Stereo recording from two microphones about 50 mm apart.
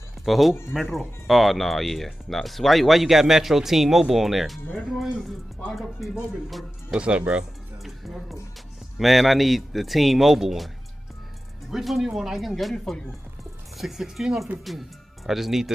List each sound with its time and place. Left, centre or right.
0.2 s speech: centre
6.9 s speech: right
8.9 s speech: centre
11.7 s speech: centre
13.7 s speech: centre